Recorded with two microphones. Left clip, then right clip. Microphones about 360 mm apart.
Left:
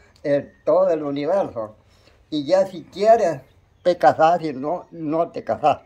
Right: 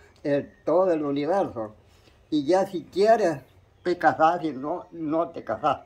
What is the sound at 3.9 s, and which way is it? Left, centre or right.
Speech, left.